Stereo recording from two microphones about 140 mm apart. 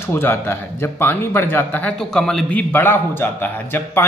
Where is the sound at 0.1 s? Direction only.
15° left (ahead or behind).